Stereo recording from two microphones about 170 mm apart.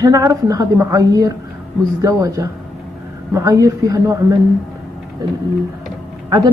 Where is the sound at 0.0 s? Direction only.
20° right (ahead or behind).